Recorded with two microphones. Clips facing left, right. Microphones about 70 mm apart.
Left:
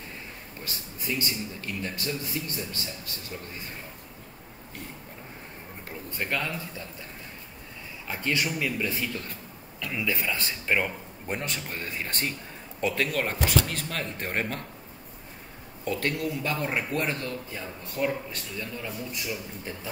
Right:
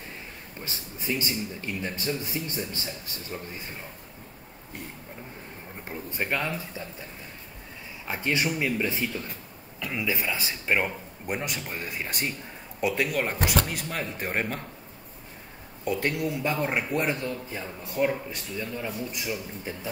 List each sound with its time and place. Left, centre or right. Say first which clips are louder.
0.6 s speech: right 2 dB; right
5.9 s speech: right 2 dB; right
8.1 s speech: right 2 dB; right
9.8 s a man's voice: even; centre
15.8 s speech: right 1 dB; centre